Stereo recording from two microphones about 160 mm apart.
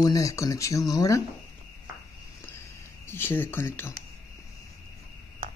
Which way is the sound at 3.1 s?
15° left (ahead or behind).